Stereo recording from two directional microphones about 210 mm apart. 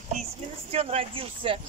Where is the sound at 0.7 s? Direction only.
30° right (ahead or behind).